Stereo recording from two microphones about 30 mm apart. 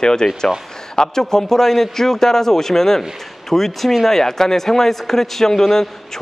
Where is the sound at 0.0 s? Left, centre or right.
Left.